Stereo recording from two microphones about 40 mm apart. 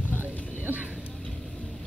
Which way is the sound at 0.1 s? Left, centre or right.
Right.